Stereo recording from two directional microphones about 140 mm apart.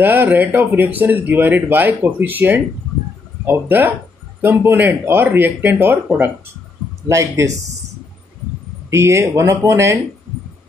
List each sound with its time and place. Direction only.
0.0 s speech: 15° right (ahead or behind)
7.1 s speech: 20° right (ahead or behind)
8.9 s speech: 20° right (ahead or behind)